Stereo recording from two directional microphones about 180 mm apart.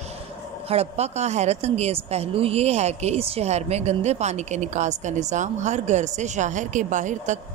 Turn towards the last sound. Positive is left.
turn(degrees=-45)  # may be behind; listen again after turning